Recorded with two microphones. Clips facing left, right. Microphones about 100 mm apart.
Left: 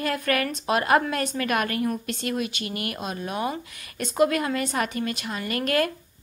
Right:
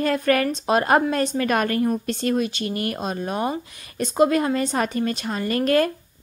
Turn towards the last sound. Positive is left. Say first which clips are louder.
# right 5 dB
turn(degrees=-30)  # may be behind; listen again after turning